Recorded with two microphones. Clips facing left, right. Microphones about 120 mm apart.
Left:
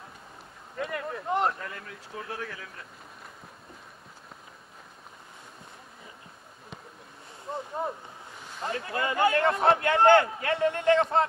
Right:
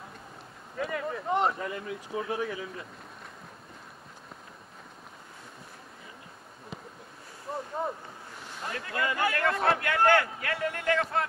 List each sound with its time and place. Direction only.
0.7 s a sound: centre (ahead or behind)
1.6 s speech: 15° right (ahead or behind)
7.5 s boat: centre (ahead or behind)
8.6 s a man's voice: 25° left (ahead or behind)